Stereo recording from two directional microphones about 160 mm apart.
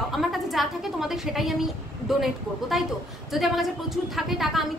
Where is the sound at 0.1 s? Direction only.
Centre (ahead or behind).